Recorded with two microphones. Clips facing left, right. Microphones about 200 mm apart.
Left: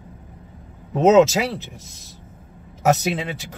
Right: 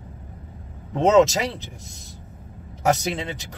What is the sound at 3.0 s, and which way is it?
Speech, 5° left (ahead or behind).